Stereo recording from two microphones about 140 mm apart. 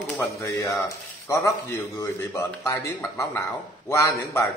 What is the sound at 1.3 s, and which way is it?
Speech, 25° left (ahead or behind).